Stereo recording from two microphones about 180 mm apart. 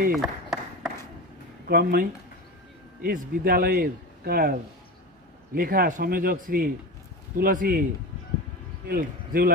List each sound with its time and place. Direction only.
0.1 s speech: centre (ahead or behind)
1.7 s a man's voice: 60° right (ahead or behind)
8.8 s speech: 55° right (ahead or behind)